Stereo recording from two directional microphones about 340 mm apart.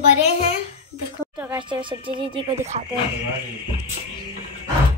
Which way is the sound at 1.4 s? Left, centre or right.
Centre.